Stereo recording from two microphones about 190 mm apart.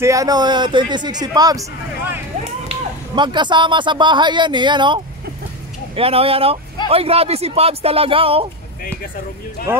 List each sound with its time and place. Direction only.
0.0 s speech: 15° right (ahead or behind)
2.7 s speech: 25° right (ahead or behind)